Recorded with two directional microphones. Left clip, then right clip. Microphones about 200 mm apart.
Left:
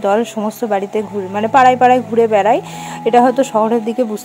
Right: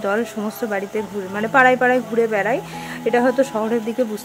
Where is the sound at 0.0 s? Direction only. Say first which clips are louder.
Left 7 dB; 20° left (ahead or behind).